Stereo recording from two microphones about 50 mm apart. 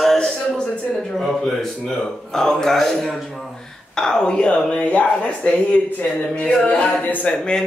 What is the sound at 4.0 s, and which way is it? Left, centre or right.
Speech, centre.